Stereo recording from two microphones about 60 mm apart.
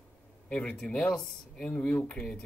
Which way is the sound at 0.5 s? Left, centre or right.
Centre.